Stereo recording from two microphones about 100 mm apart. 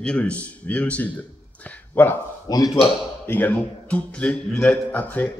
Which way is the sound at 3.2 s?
20° left (ahead or behind).